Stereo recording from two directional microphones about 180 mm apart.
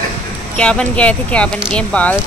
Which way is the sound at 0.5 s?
5° left (ahead or behind).